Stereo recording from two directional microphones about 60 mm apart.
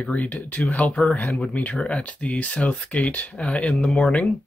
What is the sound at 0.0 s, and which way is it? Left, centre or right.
Speech, left.